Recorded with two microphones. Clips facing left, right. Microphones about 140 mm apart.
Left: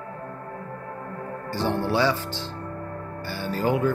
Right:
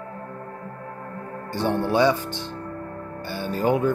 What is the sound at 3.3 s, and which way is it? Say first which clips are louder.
Music: right 2 dB; 20° right (ahead or behind).